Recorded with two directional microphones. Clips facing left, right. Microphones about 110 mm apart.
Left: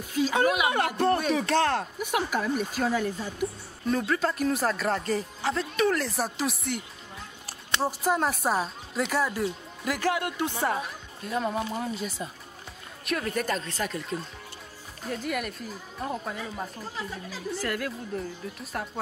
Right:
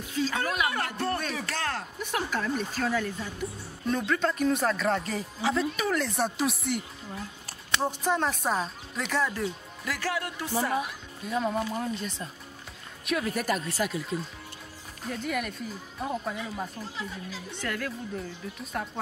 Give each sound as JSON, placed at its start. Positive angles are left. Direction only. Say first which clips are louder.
{"t": 0.2, "sound": "speech", "louder": "left 5 dB", "side_deg": 15}
{"t": 2.0, "sound": "speech", "louder": "left 3 dB", "side_deg": 15}
{"t": 3.8, "sound": "speech", "louder": "left 1 dB", "side_deg": 5}
{"t": 7.8, "sound": "speech", "louder": "left 2 dB", "side_deg": 5}
{"t": 10.8, "sound": "speech", "louder": "right 2 dB", "side_deg": 0}